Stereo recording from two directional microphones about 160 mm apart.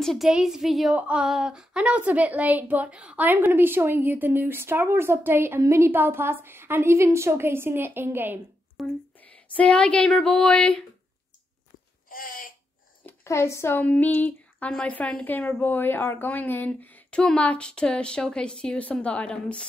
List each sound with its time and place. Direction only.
0.0 s a woman's voice: centre (ahead or behind)
8.7 s a woman's voice: 5° left (ahead or behind)
12.1 s a sound: 60° left (ahead or behind)
13.0 s a woman's voice: 15° left (ahead or behind)